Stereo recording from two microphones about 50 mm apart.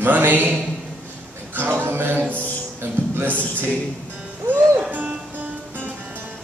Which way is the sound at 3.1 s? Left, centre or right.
Right.